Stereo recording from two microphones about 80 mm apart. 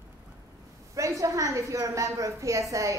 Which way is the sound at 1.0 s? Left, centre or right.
Right.